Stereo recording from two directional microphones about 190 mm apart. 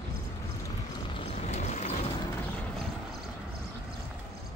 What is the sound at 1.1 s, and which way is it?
Vehicle, 35° left (ahead or behind).